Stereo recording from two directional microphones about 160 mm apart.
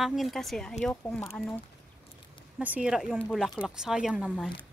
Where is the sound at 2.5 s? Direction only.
10° right (ahead or behind).